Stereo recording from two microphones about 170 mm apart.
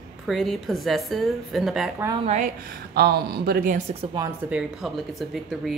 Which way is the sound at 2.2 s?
40° right (ahead or behind).